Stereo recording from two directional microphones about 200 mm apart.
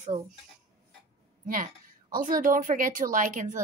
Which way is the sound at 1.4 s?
40° right (ahead or behind).